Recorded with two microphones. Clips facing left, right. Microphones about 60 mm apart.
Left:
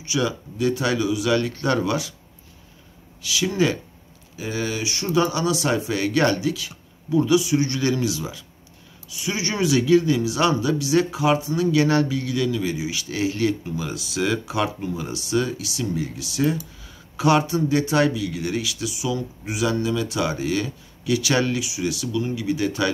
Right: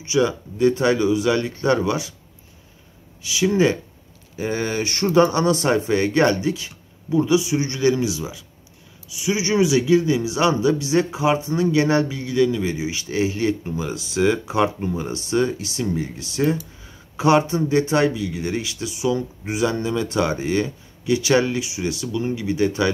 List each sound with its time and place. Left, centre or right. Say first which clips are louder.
0.0 s speech: right 4 dB; right
3.2 s speech: right 3 dB; right
4.4 s speech: right 3 dB; right